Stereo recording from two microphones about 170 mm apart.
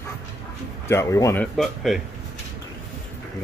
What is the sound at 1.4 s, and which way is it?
Speech, centre (ahead or behind).